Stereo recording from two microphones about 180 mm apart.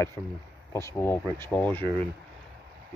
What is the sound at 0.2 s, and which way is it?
Speech, 5° right (ahead or behind).